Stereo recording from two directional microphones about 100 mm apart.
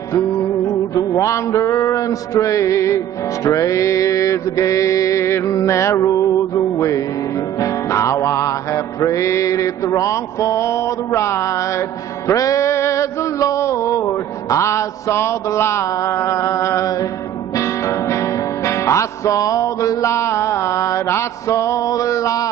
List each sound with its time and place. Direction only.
0.9 s mantra: 30° left (ahead or behind)
12.3 s music: 35° left (ahead or behind)